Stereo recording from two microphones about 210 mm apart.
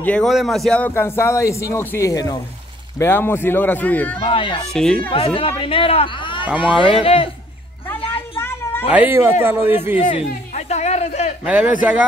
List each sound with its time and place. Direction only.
0.0 s a man's voice: 5° left (ahead or behind)
4.2 s speech: 25° left (ahead or behind)
4.6 s speech: 5° left (ahead or behind)
5.1 s speech: 25° left (ahead or behind)
6.4 s speech: 5° right (ahead or behind)
8.4 s a sound: 10° left (ahead or behind)
8.9 s speech: 10° right (ahead or behind)
10.0 s speech: 30° left (ahead or behind)
11.4 s speech: 5° right (ahead or behind)